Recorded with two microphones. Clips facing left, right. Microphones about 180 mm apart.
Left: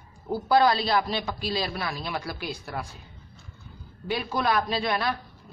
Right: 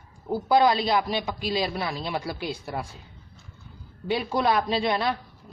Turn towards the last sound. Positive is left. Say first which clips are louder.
# right 2 dB
turn(degrees=-25)  # may be behind; listen again after turning